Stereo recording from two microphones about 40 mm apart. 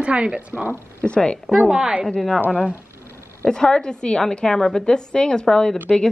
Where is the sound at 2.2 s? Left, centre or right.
Centre.